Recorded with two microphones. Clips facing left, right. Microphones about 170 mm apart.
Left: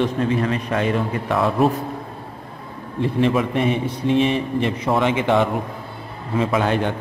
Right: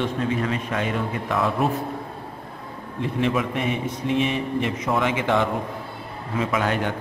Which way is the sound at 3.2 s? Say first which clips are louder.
Left 4 dB; 35° left (ahead or behind).